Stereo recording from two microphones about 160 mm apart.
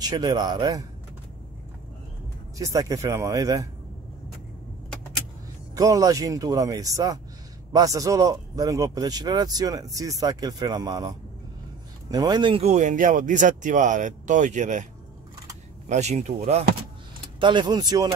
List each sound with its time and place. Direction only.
0.0 s a man's voice: 25° right (ahead or behind)
2.5 s a man's voice: 20° right (ahead or behind)
5.8 s a man's voice: 20° right (ahead or behind); by 14.9 s 50° right (ahead or behind)
15.9 s speech: 45° right (ahead or behind)
17.4 s a man's voice: 30° right (ahead or behind)